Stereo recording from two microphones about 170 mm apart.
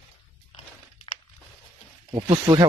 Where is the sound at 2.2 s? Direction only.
30° right (ahead or behind).